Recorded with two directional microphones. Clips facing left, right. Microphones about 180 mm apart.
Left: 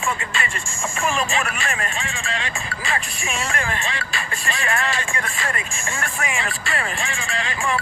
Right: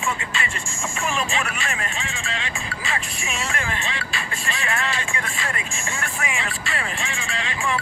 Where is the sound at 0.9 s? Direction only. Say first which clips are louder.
Left 3 dB; 50° left (ahead or behind).